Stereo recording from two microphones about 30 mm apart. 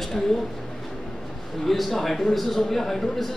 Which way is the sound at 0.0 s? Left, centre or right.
Centre.